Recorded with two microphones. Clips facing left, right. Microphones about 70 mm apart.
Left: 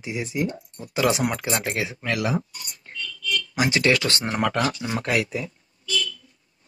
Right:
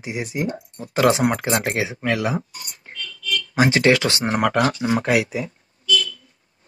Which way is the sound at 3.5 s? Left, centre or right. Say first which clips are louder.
Right 5 dB; right.